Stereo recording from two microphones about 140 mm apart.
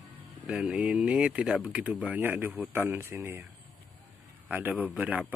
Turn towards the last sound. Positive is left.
turn(degrees=-10)  # may be behind; listen again after turning